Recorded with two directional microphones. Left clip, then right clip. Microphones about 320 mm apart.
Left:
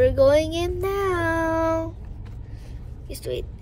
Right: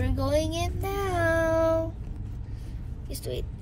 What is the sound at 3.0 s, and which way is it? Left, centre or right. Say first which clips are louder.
Speech: left 5 dB; centre.